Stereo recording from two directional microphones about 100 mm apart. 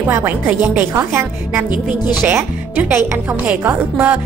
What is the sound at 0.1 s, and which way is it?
Speech, 20° right (ahead or behind).